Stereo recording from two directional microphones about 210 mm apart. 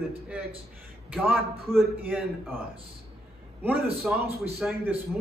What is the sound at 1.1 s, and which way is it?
A man's voice, centre (ahead or behind).